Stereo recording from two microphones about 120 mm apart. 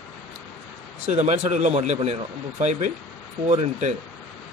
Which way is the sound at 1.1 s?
70° right (ahead or behind).